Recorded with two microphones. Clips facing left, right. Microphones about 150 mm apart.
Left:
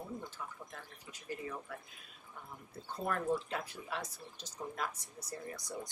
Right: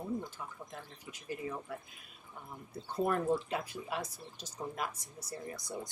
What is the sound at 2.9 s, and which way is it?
Speech, 15° right (ahead or behind).